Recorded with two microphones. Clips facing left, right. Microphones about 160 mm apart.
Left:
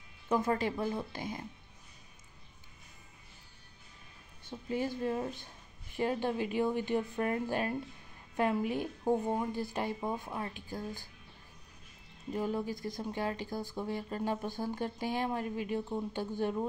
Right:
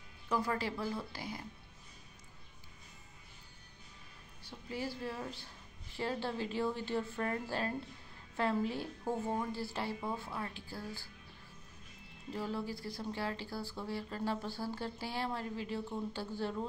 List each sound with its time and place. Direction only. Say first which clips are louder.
0.3 s speech: left 5 dB; 20° left (ahead or behind)
4.5 s speech: left 6 dB; 20° left (ahead or behind)
12.3 s speech: left 5 dB; 15° left (ahead or behind)